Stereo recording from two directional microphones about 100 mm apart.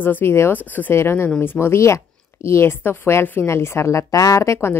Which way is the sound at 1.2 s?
10° left (ahead or behind).